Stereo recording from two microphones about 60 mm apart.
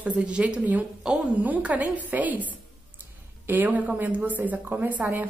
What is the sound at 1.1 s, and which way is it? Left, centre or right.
Speech, centre.